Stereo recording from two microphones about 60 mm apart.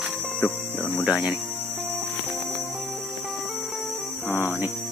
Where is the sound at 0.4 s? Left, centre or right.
Left.